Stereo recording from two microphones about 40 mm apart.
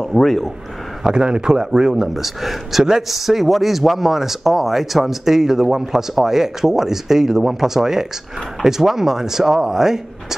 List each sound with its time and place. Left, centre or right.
0.0 s speech: centre
1.0 s speech: right